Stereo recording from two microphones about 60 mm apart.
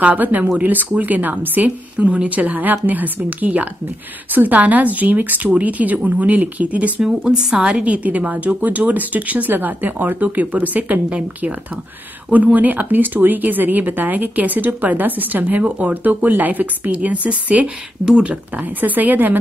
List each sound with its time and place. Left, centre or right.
0.0 s a woman's voice: right
7.0 s a woman's voice: centre; by 19.3 s right